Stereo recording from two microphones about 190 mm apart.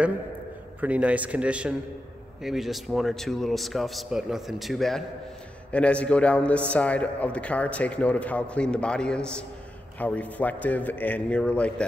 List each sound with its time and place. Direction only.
0.7 s a man's voice: 10° right (ahead or behind)